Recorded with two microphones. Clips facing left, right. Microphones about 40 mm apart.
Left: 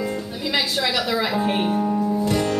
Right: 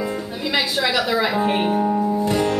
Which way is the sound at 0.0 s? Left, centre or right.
Centre.